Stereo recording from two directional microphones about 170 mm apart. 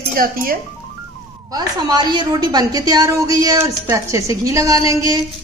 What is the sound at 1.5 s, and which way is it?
A woman's voice, 20° right (ahead or behind).